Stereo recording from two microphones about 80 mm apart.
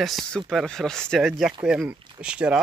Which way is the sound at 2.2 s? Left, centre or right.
Centre.